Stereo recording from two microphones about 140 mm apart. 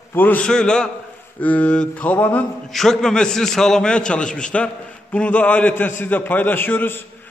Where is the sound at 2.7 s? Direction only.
Centre (ahead or behind).